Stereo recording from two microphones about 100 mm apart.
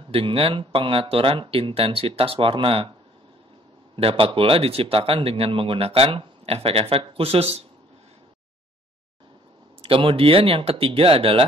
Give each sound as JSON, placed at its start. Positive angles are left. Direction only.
{"t": 0.1, "sound": "speech", "side_deg": -70}
{"t": 3.9, "sound": "speech", "side_deg": -60}
{"t": 9.8, "sound": "speech", "side_deg": -70}